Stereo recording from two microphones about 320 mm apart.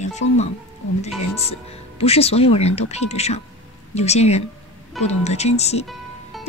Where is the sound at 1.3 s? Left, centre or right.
Centre.